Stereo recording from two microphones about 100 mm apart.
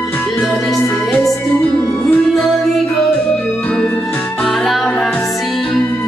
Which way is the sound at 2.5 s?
Centre (ahead or behind).